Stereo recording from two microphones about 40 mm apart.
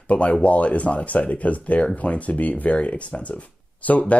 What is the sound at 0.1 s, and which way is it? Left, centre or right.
Speech, left.